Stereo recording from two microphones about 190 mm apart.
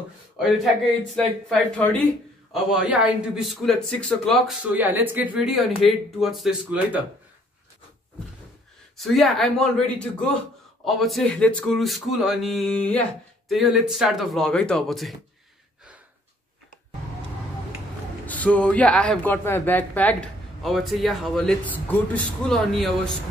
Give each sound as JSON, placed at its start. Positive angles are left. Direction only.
{"t": 1.5, "sound": "speech", "side_deg": 5}
{"t": 2.5, "sound": "speech", "side_deg": -5}
{"t": 4.7, "sound": "speech", "side_deg": -10}
{"t": 8.9, "sound": "speech", "side_deg": 0}
{"t": 18.2, "sound": "speech", "side_deg": 10}